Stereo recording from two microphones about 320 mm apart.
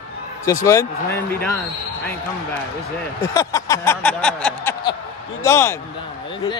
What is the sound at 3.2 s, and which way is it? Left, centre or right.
Speech, centre.